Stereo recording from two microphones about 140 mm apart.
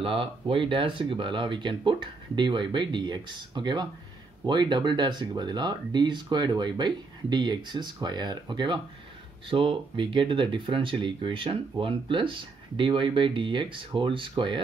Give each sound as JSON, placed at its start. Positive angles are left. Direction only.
{"t": 0.0, "sound": "speech", "side_deg": -40}